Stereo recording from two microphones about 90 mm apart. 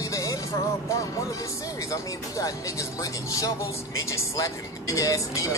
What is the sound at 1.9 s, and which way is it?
Speech, 40° left (ahead or behind).